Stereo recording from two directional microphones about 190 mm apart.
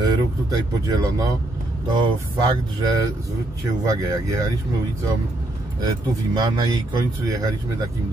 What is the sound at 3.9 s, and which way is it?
Speech, 15° right (ahead or behind).